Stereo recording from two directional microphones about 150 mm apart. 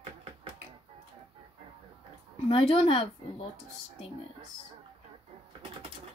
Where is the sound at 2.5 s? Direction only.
40° left (ahead or behind).